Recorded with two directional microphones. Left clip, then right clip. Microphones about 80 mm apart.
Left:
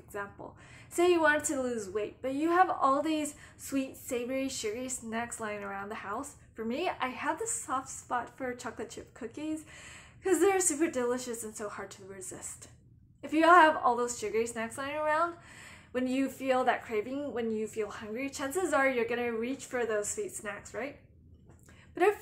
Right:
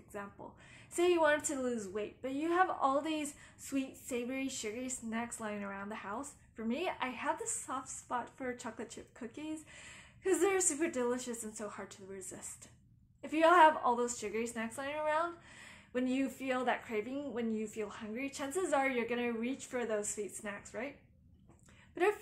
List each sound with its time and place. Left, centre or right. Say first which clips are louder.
0.1 s a woman's voice: left 6 dB; left